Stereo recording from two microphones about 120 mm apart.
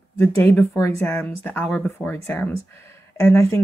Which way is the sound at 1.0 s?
15° left (ahead or behind).